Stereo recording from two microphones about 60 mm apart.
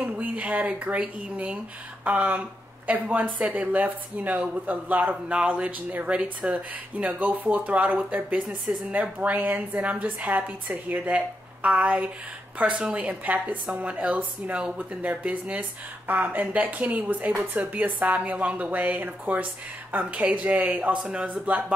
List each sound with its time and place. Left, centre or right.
0.0 s speech: right